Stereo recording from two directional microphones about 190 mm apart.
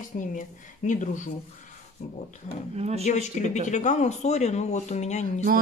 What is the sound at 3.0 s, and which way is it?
Speech, 40° left (ahead or behind).